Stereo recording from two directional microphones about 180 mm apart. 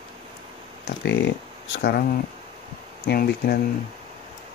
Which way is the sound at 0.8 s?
70° left (ahead or behind).